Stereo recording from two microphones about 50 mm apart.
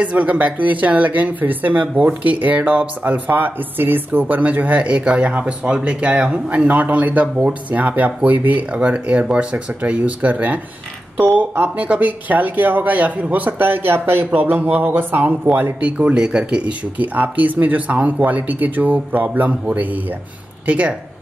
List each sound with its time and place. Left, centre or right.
0.0 s speech: right
4.4 s speech: right
6.5 s speech: right
11.7 s speech: right
16.0 s speech: right
17.0 s speech: right